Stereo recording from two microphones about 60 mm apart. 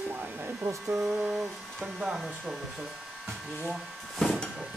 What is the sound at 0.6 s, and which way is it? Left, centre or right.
Speech, right.